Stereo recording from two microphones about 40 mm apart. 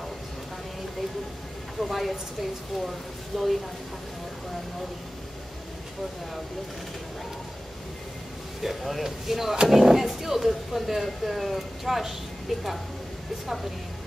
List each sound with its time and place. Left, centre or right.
1.8 s speech: centre
3.3 s speech: centre
8.6 s speech: centre